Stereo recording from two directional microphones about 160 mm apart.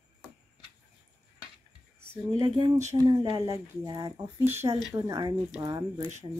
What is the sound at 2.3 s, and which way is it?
Speech, 25° right (ahead or behind).